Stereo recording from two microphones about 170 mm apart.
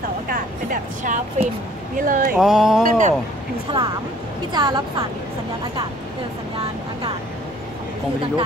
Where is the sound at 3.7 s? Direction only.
30° right (ahead or behind).